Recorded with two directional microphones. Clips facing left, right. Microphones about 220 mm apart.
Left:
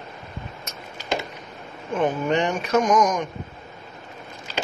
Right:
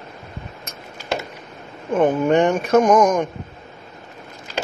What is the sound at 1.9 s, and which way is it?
Speech, 50° right (ahead or behind).